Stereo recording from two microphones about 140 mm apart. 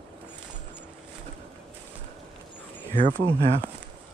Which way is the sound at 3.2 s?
40° right (ahead or behind).